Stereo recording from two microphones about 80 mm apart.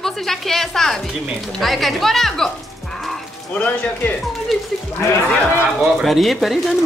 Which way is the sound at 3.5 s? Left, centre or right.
Centre.